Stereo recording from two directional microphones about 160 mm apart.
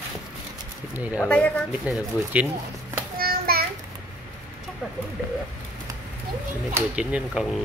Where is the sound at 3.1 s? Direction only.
70° right (ahead or behind).